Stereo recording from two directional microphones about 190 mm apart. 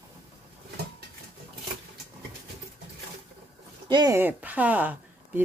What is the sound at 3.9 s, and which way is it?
Speech, 20° right (ahead or behind).